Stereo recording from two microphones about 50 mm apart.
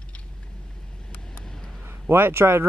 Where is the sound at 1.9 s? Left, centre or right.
Right.